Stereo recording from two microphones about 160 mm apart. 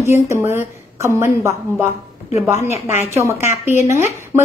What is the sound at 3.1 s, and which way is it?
Speech, 15° right (ahead or behind).